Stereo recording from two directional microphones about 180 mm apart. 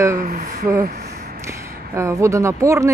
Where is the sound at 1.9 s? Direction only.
15° right (ahead or behind).